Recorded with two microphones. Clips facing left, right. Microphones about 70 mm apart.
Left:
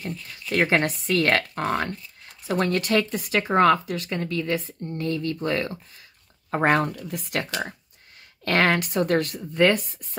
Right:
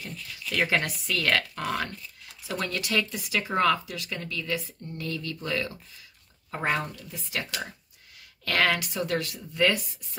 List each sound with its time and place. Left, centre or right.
0.0 s speech: left
6.5 s speech: left